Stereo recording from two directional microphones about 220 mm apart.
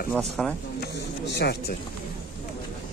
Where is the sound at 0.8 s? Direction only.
50° left (ahead or behind).